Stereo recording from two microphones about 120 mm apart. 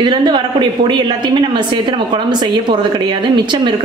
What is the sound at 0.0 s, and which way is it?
A woman's voice, 40° right (ahead or behind).